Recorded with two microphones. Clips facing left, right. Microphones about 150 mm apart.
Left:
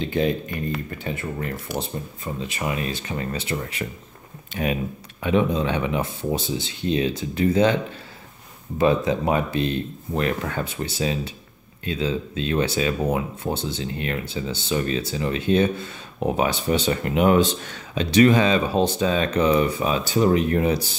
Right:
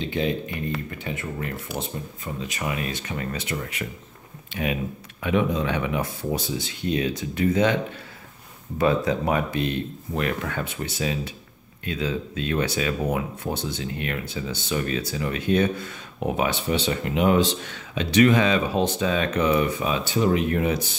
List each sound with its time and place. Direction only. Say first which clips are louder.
0.0 s speech: left 3 dB; 45° left (ahead or behind)
1.0 s speech: left 2 dB; 35° left (ahead or behind)
8.7 s speech: left 2 dB; 20° left (ahead or behind)